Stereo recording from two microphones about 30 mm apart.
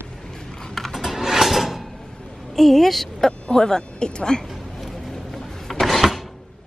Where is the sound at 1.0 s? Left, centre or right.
Centre.